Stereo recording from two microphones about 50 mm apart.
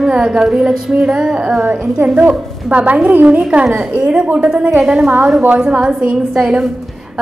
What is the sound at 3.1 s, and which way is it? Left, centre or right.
Speech, right.